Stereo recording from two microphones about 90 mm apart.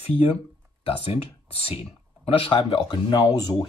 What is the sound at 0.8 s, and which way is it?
Speech, 90° left.